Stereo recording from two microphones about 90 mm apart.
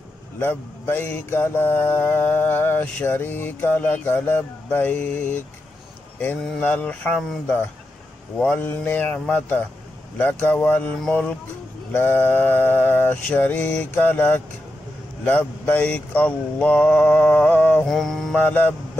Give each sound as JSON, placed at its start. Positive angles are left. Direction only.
{"t": 0.4, "sound": "speech", "side_deg": 25}
{"t": 6.6, "sound": "mantra", "side_deg": 15}
{"t": 8.4, "sound": "mantra", "side_deg": 20}
{"t": 9.3, "sound": "speech", "side_deg": 20}
{"t": 11.0, "sound": "mantra", "side_deg": 5}
{"t": 11.9, "sound": "speech", "side_deg": 20}
{"t": 15.2, "sound": "mantra", "side_deg": 15}
{"t": 17.8, "sound": "mantra", "side_deg": 5}
{"t": 18.3, "sound": "speech", "side_deg": 20}